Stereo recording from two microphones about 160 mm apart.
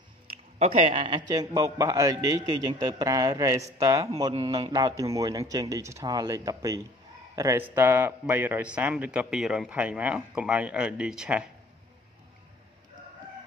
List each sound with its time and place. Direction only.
0.6 s a man's voice: 40° right (ahead or behind); by 11.4 s 5° right (ahead or behind)